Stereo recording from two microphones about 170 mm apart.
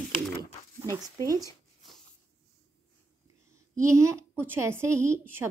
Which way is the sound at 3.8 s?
15° right (ahead or behind).